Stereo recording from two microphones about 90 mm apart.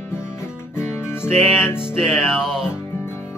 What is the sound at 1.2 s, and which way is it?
Music, 5° right (ahead or behind).